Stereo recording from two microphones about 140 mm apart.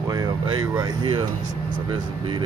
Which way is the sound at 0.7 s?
25° right (ahead or behind).